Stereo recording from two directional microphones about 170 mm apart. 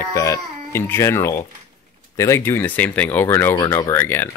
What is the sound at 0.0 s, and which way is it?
Speech, 15° left (ahead or behind).